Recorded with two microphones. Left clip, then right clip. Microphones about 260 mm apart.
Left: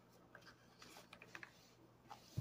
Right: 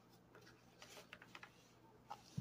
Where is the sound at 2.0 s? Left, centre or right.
Centre.